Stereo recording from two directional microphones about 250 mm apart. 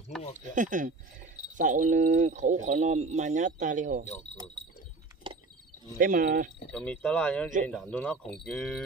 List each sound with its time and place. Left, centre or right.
0.1 s a sound: centre
0.6 s speech: right
5.2 s wild animals: centre
5.9 s speech: right
6.7 s speech: centre